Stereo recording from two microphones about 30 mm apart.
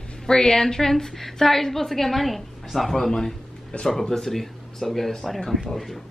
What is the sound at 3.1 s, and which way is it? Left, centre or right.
A woman's voice, left.